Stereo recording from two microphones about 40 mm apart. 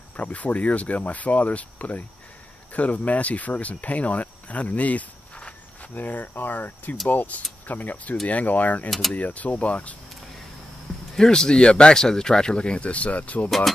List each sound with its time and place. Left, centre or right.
0.1 s speech: left
11.1 s speech: centre; by 13.5 s left